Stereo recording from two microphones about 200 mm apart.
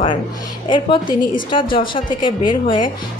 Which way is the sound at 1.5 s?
25° left (ahead or behind).